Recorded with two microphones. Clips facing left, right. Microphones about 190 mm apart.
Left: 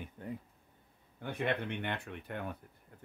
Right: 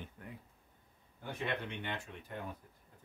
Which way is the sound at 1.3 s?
60° left (ahead or behind).